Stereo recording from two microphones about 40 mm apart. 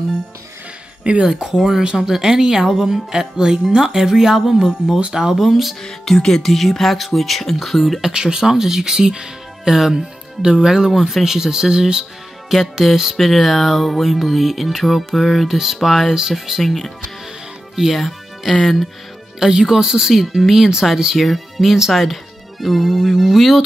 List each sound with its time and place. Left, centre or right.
1.2 s speech: centre
5.3 s music: centre
5.8 s music: centre
8.0 s speech: centre
9.7 s speech: centre
12.7 s music: centre
17.9 s speech: centre
19.4 s speech: centre
21.7 s music: centre